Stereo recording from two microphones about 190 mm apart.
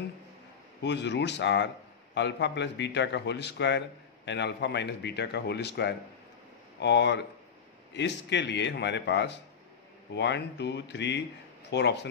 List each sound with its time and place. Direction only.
0.8 s a man's voice: 65° left (ahead or behind)